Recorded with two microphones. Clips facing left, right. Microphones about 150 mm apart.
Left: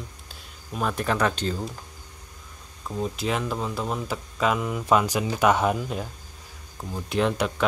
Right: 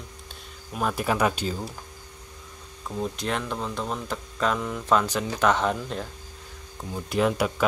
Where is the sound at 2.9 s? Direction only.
Centre (ahead or behind).